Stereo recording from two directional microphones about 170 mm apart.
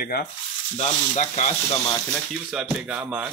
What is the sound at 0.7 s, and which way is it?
Speech, 40° left (ahead or behind).